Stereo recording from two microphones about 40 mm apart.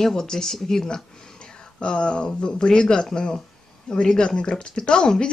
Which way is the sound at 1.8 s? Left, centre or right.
Left.